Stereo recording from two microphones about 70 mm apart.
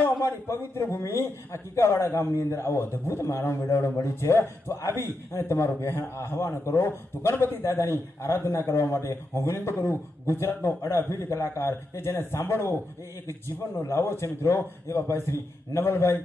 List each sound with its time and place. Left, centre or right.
0.2 s a man's voice: left